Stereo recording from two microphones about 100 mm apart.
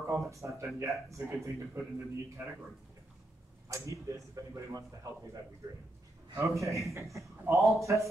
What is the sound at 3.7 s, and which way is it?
Speech, 30° right (ahead or behind).